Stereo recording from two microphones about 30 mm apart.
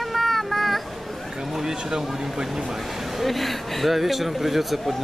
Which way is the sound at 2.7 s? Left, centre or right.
Centre.